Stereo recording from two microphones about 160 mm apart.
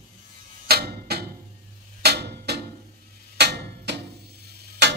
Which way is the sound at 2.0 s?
90° right.